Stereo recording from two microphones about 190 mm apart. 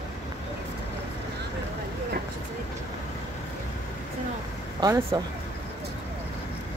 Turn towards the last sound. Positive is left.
turn(degrees=-20)  # may be behind; listen again after turning